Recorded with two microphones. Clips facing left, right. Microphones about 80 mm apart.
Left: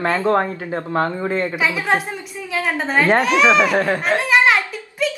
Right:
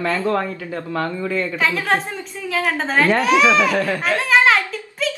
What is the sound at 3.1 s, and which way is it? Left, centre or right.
Speech, left.